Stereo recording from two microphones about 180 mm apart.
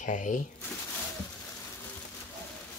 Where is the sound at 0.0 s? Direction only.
45° left (ahead or behind).